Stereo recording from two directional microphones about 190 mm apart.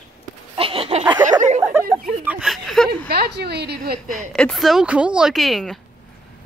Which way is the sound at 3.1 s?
55° right (ahead or behind).